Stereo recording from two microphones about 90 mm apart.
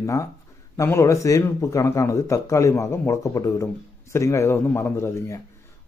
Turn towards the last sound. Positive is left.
turn(degrees=30)  # may be behind; listen again after turning